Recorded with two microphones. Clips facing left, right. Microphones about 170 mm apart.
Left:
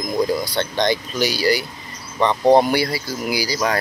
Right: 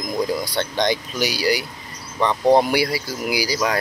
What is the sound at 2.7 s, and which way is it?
Speech, 10° right (ahead or behind).